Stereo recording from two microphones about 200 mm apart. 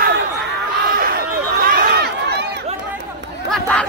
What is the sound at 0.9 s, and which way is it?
Run, 50° right (ahead or behind).